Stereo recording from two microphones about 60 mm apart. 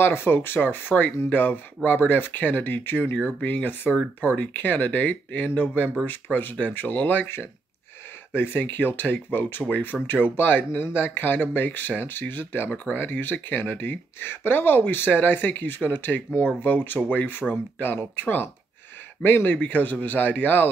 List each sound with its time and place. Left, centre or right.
0.0 s speech: left
8.4 s speech: left
19.5 s speech: left